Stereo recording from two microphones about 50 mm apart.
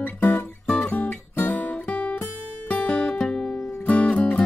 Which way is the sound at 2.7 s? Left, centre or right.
Left.